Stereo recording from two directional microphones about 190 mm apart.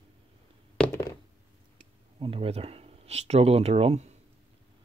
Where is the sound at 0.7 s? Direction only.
10° left (ahead or behind).